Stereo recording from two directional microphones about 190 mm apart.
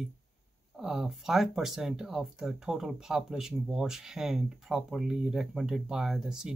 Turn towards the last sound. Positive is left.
turn(degrees=-5)  # may be behind; listen again after turning